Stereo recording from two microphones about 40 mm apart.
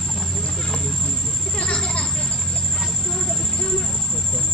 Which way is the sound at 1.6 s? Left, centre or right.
Centre.